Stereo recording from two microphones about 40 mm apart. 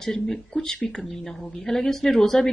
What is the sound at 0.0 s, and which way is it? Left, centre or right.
A woman's voice, centre.